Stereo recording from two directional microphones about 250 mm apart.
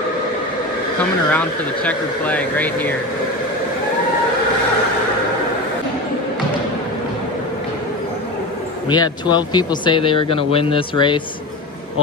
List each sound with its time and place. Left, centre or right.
1.3 s speech: centre
8.8 s speech: centre